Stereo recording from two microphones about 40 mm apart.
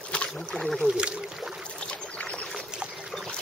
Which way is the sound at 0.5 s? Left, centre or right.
Left.